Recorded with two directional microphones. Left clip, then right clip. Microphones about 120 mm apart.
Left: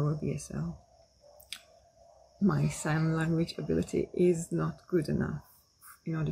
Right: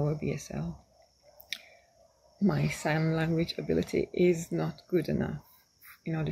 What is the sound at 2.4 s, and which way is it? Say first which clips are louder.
Speech: right 2 dB; 10° left (ahead or behind).